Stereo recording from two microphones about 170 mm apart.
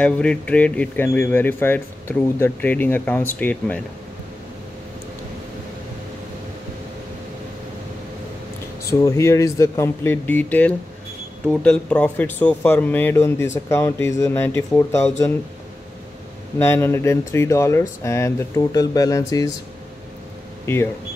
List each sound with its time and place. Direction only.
0.0 s speech: 5° left (ahead or behind)
9.0 s speech: 15° left (ahead or behind)
16.5 s speech: 15° left (ahead or behind)
20.6 s speech: 15° left (ahead or behind)